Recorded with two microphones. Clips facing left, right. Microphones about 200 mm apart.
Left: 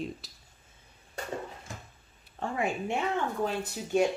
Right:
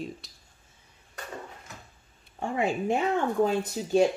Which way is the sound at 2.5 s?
30° right (ahead or behind).